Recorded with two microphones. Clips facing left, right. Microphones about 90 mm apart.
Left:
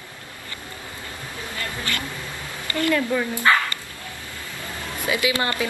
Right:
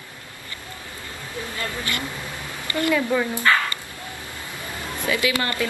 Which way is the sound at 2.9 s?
5° right (ahead or behind).